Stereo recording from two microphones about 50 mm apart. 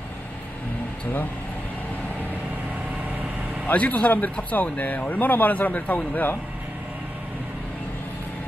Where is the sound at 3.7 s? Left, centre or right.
Left.